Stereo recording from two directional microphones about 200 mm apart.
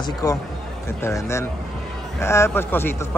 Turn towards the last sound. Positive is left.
turn(degrees=10)  # may be behind; listen again after turning